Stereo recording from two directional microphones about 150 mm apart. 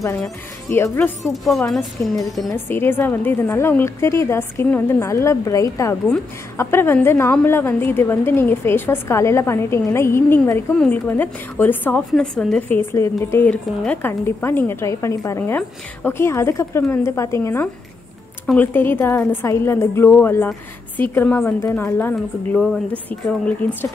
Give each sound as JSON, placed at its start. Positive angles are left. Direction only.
{"t": 0.0, "sound": "a woman's voice", "side_deg": 20}
{"t": 1.3, "sound": "a woman's voice", "side_deg": 0}
{"t": 22.1, "sound": "a woman's voice", "side_deg": 5}